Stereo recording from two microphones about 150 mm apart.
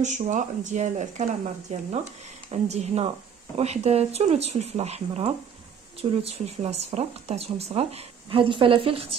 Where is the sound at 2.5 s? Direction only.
45° right (ahead or behind).